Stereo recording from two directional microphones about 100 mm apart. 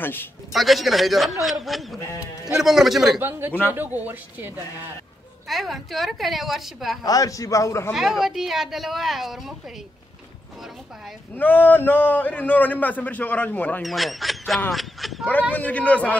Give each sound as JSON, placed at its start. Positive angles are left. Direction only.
{"t": 0.0, "sound": "speech", "side_deg": 20}
{"t": 0.5, "sound": "speech", "side_deg": 0}
{"t": 3.2, "sound": "speech", "side_deg": -20}
{"t": 5.5, "sound": "speech", "side_deg": 0}
{"t": 7.0, "sound": "a man's voice", "side_deg": 35}
{"t": 7.9, "sound": "speech", "side_deg": -5}
{"t": 11.3, "sound": "a man's voice", "side_deg": 20}
{"t": 13.8, "sound": "speech", "side_deg": 0}
{"t": 15.5, "sound": "a man's voice", "side_deg": 15}